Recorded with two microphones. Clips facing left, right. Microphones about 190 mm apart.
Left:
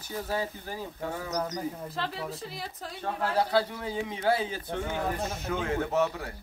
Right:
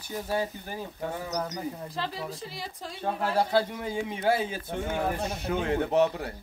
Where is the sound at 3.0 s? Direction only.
10° right (ahead or behind).